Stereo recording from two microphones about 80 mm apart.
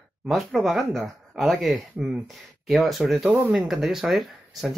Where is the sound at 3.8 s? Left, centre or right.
Centre.